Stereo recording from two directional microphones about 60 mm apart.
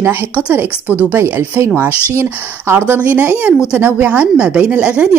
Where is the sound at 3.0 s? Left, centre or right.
Right.